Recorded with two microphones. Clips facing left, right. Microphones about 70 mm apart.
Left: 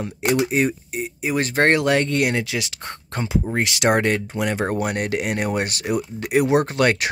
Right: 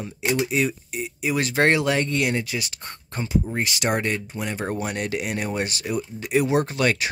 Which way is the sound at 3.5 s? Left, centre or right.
Left.